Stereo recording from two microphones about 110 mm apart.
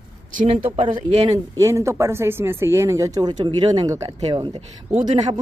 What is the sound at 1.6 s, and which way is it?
Speech, 25° right (ahead or behind).